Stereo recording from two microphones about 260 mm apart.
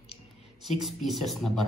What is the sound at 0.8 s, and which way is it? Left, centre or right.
Speech, centre.